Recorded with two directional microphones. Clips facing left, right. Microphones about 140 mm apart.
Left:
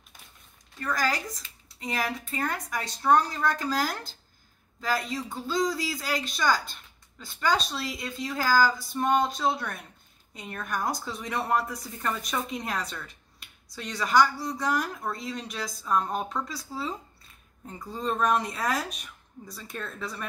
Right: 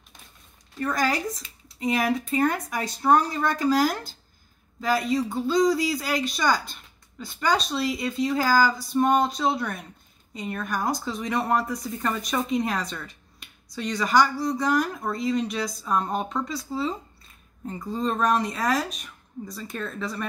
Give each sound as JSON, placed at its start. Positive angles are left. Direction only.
{"t": 0.8, "sound": "speech", "side_deg": -25}
{"t": 1.4, "sound": "speech", "side_deg": -15}
{"t": 5.7, "sound": "speech", "side_deg": -15}